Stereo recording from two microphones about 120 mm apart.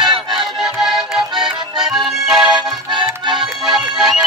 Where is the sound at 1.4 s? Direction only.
5° right (ahead or behind).